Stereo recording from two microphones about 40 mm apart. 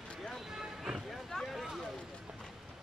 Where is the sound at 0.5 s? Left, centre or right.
Centre.